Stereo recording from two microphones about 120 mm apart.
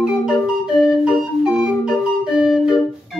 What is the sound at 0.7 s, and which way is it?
Music, centre (ahead or behind).